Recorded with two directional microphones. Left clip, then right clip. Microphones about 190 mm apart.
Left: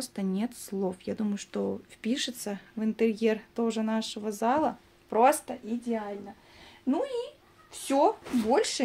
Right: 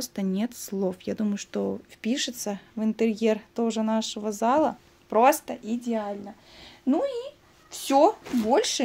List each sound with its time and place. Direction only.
0.0 s speech: 20° right (ahead or behind); by 8.3 s 45° right (ahead or behind)
8.5 s speech: 30° right (ahead or behind)